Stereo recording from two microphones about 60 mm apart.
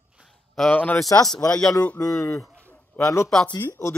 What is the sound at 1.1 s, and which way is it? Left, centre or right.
Speech, left.